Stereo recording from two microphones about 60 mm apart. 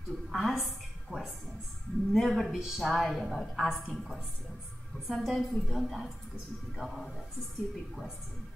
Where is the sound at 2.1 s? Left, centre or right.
Centre.